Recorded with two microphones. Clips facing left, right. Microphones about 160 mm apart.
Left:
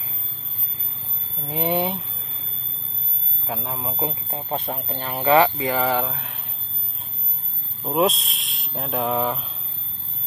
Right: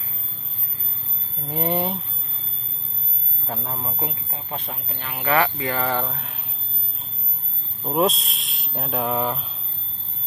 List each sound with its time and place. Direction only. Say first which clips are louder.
1.4 s speech: left 1 dB; centre (ahead or behind)
3.4 s speech: left 1 dB; centre (ahead or behind)
4.0 s speech: left 4 dB; 25° left (ahead or behind)
5.3 s speech: left 4 dB; 20° left (ahead or behind)
6.1 s speech: even; centre (ahead or behind)
7.8 s speech: even; centre (ahead or behind)